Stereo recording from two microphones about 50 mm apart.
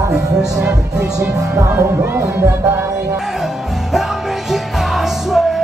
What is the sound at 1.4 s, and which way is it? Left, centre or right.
Music, right.